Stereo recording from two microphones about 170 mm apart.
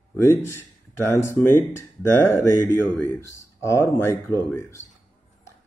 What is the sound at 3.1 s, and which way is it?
Mantra, 15° left (ahead or behind).